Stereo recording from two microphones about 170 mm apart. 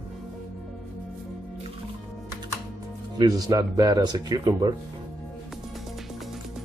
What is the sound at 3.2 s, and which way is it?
Speech, 20° right (ahead or behind).